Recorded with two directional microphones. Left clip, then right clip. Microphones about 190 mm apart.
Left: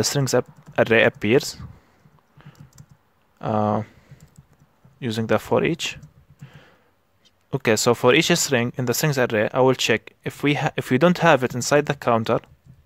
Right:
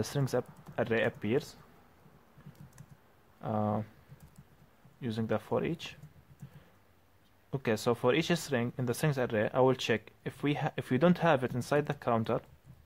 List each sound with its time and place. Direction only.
0.0 s speech: 35° left (ahead or behind)
3.3 s speech: 40° left (ahead or behind)
5.0 s speech: 40° left (ahead or behind)
7.5 s speech: 40° left (ahead or behind)